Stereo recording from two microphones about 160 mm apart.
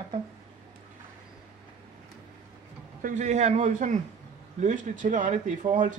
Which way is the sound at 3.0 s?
50° right (ahead or behind).